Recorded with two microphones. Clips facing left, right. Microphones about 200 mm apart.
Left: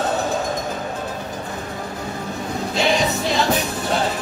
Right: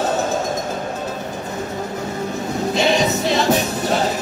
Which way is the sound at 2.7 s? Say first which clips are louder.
Right 2 dB; 20° right (ahead or behind).